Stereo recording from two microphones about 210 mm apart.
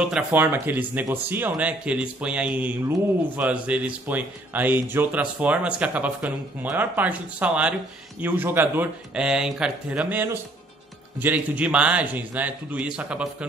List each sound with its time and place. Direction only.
0.0 s speech: 5° right (ahead or behind)